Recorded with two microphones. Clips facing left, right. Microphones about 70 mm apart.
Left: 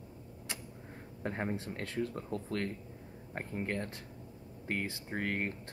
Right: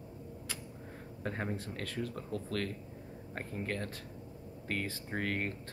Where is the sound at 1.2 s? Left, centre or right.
Left.